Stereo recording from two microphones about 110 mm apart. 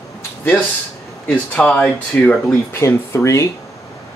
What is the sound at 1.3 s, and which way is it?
Speech, 10° left (ahead or behind).